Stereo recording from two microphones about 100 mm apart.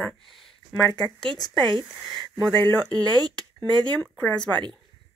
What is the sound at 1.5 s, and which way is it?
Speech, 50° right (ahead or behind).